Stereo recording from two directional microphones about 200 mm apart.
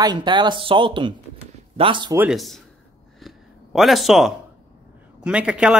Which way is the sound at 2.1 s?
Centre (ahead or behind).